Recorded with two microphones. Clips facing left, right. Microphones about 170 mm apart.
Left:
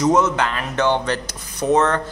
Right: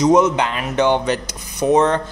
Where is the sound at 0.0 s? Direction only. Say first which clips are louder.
Right 3 dB; 15° right (ahead or behind).